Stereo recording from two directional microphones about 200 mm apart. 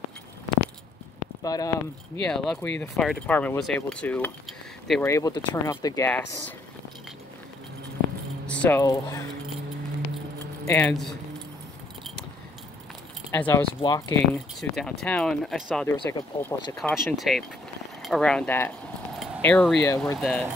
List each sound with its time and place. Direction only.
1.4 s speech: 15° left (ahead or behind)
2.2 s speech: 5° left (ahead or behind)
5.0 s speech: 15° left (ahead or behind)
8.5 s speech: 10° left (ahead or behind)
10.7 s speech: 10° left (ahead or behind)
13.3 s speech: 10° left (ahead or behind)
13.7 s speech: 20° left (ahead or behind)
14.3 s speech: 5° left (ahead or behind)
16.9 s speech: centre (ahead or behind)
20.2 s speech: 5° left (ahead or behind)